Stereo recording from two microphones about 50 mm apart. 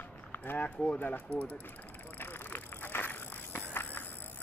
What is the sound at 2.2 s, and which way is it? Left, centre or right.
Bicycle, left.